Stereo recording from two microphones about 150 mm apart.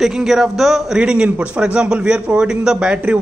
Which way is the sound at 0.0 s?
5° right (ahead or behind).